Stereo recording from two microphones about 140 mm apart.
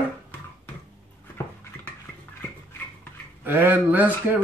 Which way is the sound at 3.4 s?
15° right (ahead or behind).